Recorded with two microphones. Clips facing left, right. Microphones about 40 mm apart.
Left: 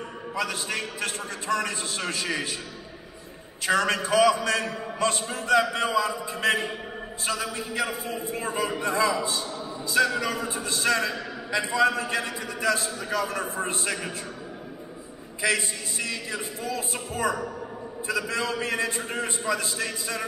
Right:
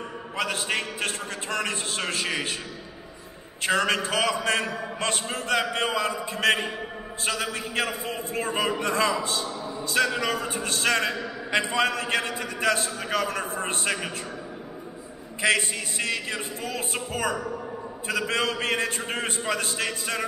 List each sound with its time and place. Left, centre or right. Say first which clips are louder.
0.4 s a man's voice: right 2 dB; right
3.6 s a man's voice: even; right
10.0 s speech: left 1 dB; right
10.5 s a man's voice: left 1 dB; right
15.4 s a man's voice: right 3 dB; right